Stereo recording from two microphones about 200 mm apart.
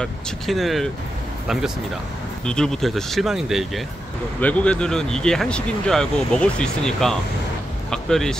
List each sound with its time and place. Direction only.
0.0 s speech: centre (ahead or behind)
2.4 s speech: 5° left (ahead or behind)